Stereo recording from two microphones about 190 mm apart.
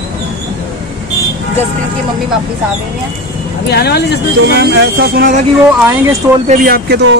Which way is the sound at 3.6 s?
60° left (ahead or behind).